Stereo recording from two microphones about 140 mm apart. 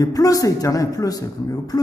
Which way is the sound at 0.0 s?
25° left (ahead or behind).